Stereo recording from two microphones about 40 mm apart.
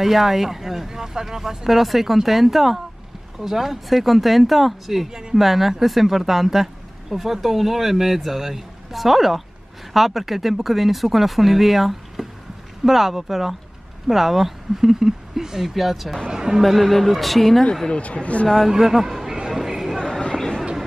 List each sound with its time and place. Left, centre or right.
0.0 s speech: centre
16.3 s speech: centre
16.6 s speech: centre
18.0 s speech: left
18.7 s speech: centre
19.5 s chatter: centre
20.3 s a sound: centre